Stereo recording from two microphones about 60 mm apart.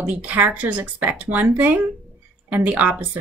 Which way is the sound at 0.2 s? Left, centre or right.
Right.